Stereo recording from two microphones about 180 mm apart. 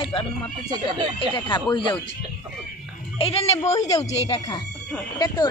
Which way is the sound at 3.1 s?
30° left (ahead or behind).